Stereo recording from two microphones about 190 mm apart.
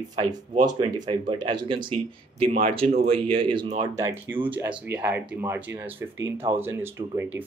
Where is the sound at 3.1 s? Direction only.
30° right (ahead or behind).